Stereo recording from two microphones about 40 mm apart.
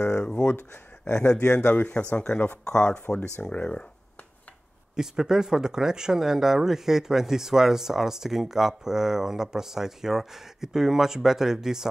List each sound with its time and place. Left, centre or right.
0.2 s speech: centre
0.6 s speech: left
1.7 s speech: left
2.0 s speech: left
4.9 s speech: centre